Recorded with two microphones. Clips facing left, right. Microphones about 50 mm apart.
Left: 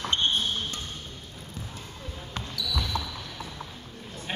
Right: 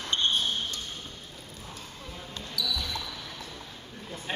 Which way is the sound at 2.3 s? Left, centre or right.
Left.